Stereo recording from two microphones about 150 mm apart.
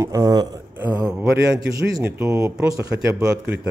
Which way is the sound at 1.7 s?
20° right (ahead or behind).